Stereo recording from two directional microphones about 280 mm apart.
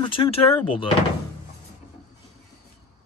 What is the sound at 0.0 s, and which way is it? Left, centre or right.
Speech, centre.